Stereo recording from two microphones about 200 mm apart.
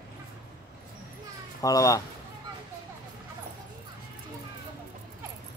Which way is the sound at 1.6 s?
15° left (ahead or behind).